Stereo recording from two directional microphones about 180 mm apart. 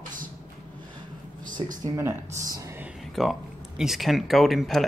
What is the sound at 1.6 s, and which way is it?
Speech, 30° right (ahead or behind).